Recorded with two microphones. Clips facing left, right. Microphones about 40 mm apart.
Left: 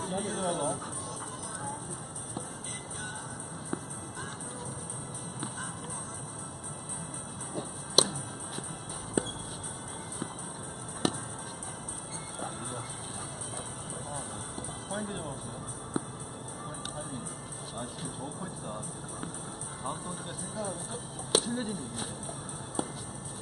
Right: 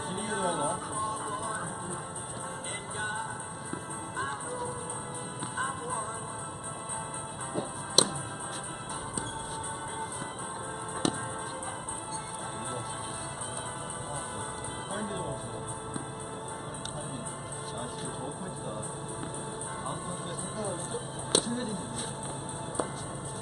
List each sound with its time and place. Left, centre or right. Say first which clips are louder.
0.2 s music: right 3 dB; right
5.4 s music: right 7 dB; right
8.0 s music: even; centre
11.0 s music: even; centre
17.7 s music: right 1 dB; centre
21.3 s a sound: even; centre